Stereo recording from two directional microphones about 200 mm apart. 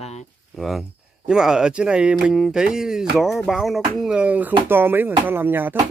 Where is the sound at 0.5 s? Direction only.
Centre (ahead or behind).